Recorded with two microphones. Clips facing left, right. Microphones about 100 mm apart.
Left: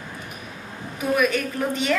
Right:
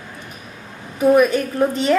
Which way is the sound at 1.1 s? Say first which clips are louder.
Right 7 dB; 35° right (ahead or behind).